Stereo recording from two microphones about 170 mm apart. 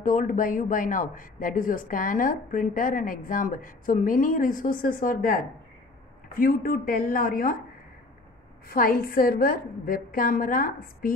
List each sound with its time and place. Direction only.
0.0 s a woman's voice: 50° left (ahead or behind)
8.6 s a woman's voice: 60° left (ahead or behind)